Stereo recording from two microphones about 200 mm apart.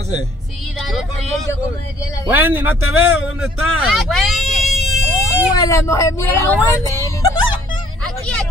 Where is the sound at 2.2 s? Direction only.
10° right (ahead or behind).